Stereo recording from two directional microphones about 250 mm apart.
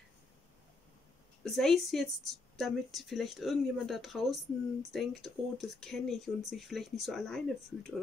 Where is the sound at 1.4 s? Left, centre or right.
Centre.